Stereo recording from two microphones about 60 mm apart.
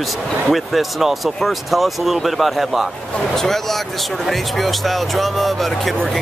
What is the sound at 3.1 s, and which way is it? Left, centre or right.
Speech, centre.